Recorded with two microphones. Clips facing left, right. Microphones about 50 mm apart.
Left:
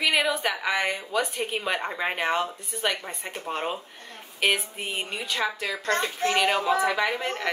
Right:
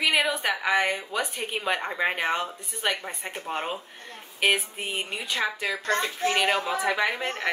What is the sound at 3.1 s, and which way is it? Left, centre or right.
Speech, centre.